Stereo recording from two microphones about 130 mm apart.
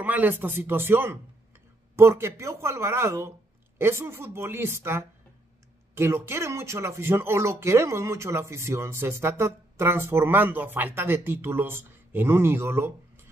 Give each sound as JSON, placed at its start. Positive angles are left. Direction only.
{"t": 0.0, "sound": "speech", "side_deg": -15}